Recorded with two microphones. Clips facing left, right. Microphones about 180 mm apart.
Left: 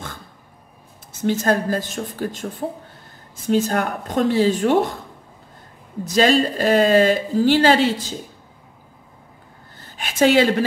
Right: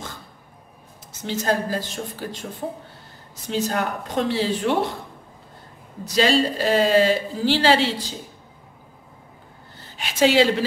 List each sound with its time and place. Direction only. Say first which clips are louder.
1.2 s a man's voice: left 4 dB; 50° left (ahead or behind)
3.4 s a man's voice: left 5 dB; 45° left (ahead or behind)
6.0 s a man's voice: left 3 dB; 50° left (ahead or behind)
9.8 s a sound: left 2 dB; 50° left (ahead or behind)